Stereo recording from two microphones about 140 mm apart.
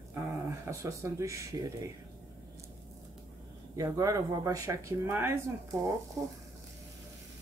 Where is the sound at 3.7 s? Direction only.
25° right (ahead or behind).